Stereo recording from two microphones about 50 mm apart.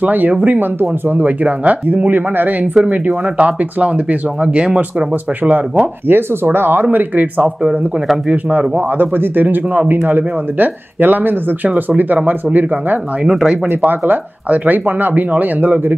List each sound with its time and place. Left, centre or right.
0.0 s speech: right
0.6 s speech: right
1.2 s speech: right
2.0 s speech: right
2.6 s speech: right
6.0 s speech: right
8.7 s speech: right
13.3 s speech: centre
13.8 s speech: right